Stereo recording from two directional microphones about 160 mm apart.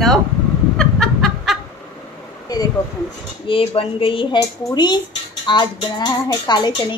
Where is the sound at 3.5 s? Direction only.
35° left (ahead or behind).